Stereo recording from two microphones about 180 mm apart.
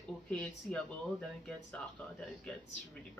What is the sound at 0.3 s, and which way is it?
Speech, 5° left (ahead or behind).